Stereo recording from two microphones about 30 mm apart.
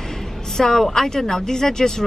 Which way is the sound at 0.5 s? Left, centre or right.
Centre.